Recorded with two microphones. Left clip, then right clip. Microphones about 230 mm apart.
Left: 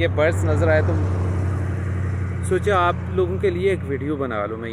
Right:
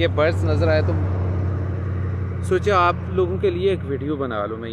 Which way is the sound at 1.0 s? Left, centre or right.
Left.